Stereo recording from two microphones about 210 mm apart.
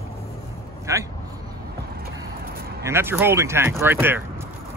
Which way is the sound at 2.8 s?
10° right (ahead or behind).